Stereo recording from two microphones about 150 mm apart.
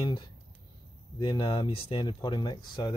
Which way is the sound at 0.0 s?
30° left (ahead or behind).